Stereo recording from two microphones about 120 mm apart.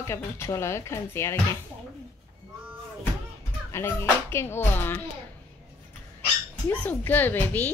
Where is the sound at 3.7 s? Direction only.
20° left (ahead or behind).